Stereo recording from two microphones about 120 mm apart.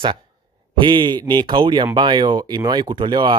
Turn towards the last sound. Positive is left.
turn(degrees=-40)  # may be behind; listen again after turning